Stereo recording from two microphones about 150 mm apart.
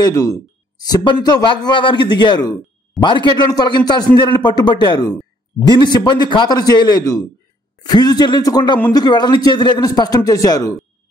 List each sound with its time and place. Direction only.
0.0 s a man's voice: 25° left (ahead or behind)